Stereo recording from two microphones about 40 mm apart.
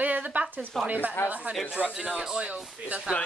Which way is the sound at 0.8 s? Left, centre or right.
Right.